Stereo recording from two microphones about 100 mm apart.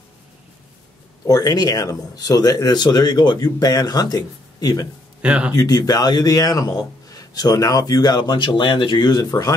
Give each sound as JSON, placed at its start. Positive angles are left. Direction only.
{"t": 1.2, "sound": "speech", "side_deg": 40}
{"t": 5.2, "sound": "speech", "side_deg": -10}
{"t": 5.5, "sound": "speech", "side_deg": 40}